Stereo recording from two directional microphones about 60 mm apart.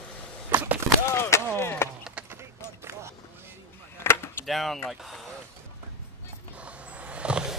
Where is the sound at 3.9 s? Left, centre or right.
Left.